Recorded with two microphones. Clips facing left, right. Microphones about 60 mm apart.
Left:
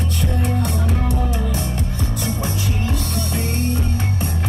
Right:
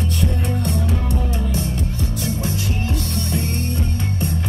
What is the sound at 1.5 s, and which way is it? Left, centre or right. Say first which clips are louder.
Music: even; left.